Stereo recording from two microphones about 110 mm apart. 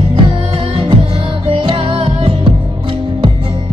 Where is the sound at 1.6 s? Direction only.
50° right (ahead or behind).